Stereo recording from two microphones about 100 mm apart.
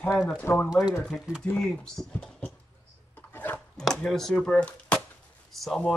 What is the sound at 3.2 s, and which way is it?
Dog, 20° left (ahead or behind).